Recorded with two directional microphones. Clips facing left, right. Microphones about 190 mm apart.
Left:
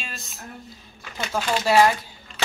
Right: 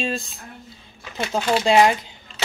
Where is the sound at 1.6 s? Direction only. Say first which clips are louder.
Right 1 dB; 20° right (ahead or behind).